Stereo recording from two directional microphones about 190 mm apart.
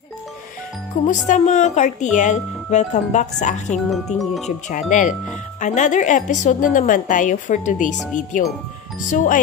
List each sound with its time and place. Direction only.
1.0 s speech: 40° left (ahead or behind)
3.7 s speech: centre (ahead or behind)
4.5 s speech: 40° left (ahead or behind)